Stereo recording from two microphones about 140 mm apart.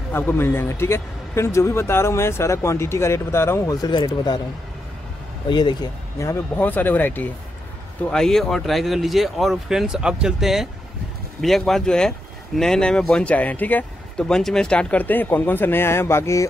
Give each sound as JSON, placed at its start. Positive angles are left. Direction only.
{"t": 0.1, "sound": "speech", "side_deg": 15}
{"t": 5.5, "sound": "speech", "side_deg": 30}